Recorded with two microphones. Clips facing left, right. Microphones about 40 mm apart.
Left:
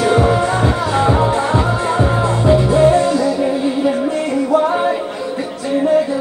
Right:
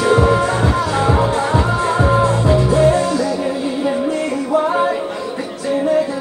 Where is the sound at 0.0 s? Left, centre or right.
Left.